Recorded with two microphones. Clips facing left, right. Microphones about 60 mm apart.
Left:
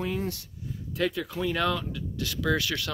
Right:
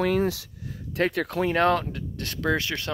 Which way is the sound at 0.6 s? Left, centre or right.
Right.